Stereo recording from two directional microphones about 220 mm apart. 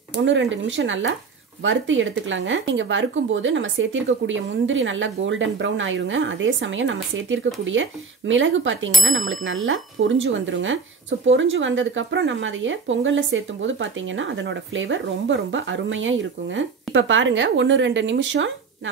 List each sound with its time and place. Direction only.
0.1 s speech: 55° right (ahead or behind)